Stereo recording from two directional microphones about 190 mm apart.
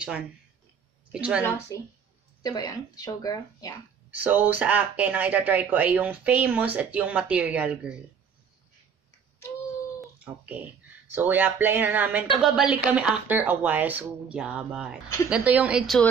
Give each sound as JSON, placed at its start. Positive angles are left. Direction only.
{"t": 1.1, "sound": "speech", "side_deg": -5}
{"t": 1.4, "sound": "speech", "side_deg": 10}
{"t": 4.1, "sound": "speech", "side_deg": -10}
{"t": 10.1, "sound": "speech", "side_deg": -10}